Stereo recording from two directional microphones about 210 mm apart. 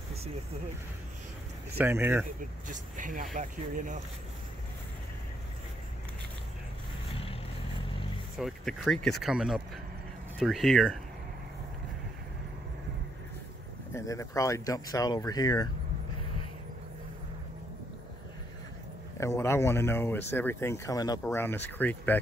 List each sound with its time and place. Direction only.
1.8 s speech: 10° right (ahead or behind)
2.7 s speech: 40° right (ahead or behind)
8.4 s speech: centre (ahead or behind)
13.9 s speech: 15° left (ahead or behind)
19.1 s speech: 15° left (ahead or behind)